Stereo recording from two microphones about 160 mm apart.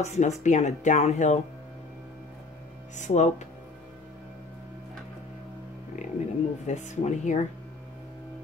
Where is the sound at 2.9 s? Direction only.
50° left (ahead or behind).